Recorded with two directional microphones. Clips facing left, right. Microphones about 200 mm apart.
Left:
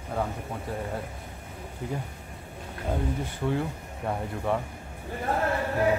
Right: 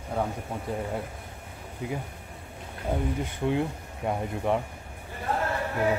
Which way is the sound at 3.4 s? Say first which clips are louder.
Right 2 dB; 20° right (ahead or behind).